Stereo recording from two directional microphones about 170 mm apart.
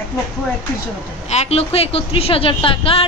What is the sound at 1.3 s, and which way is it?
Speech, 40° left (ahead or behind).